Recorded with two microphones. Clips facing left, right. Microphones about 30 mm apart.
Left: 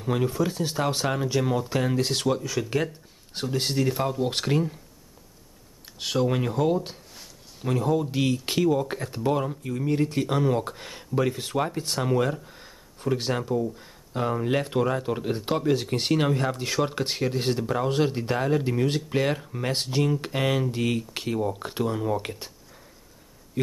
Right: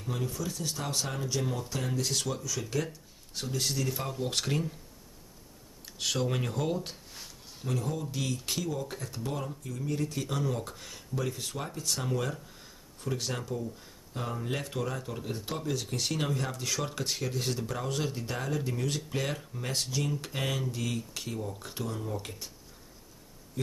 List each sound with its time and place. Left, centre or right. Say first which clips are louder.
0.0 s speech: left 10 dB; left
4.0 s speech: left 7 dB; centre
5.9 s speech: left 6 dB; centre
7.6 s speech: left 9 dB; left